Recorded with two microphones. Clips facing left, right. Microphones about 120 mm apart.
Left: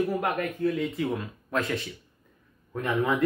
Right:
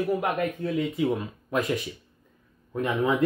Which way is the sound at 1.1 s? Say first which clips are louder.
Right 2 dB; 15° right (ahead or behind).